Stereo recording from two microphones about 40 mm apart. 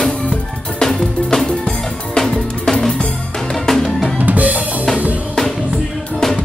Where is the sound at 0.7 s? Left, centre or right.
Centre.